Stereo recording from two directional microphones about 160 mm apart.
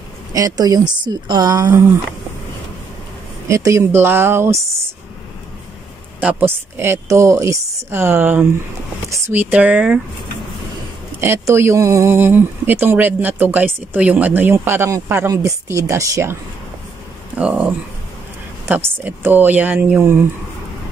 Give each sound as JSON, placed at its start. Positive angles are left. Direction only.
{"t": 0.3, "sound": "a woman's voice", "side_deg": -20}
{"t": 3.4, "sound": "speech", "side_deg": -20}
{"t": 6.2, "sound": "speech", "side_deg": -15}
{"t": 11.1, "sound": "speech", "side_deg": -15}
{"t": 17.4, "sound": "speech", "side_deg": -5}